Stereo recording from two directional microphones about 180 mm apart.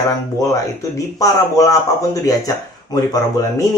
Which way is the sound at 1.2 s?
20° left (ahead or behind).